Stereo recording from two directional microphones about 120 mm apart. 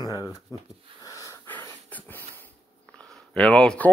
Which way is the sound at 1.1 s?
25° left (ahead or behind).